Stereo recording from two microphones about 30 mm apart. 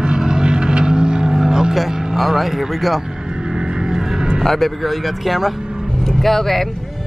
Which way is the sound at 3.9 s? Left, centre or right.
Right.